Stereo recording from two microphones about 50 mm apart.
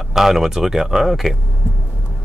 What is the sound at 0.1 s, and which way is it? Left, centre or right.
Speech, centre.